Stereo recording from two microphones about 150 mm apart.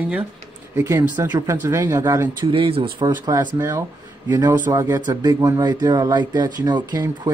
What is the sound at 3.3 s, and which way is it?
Speech, 20° right (ahead or behind).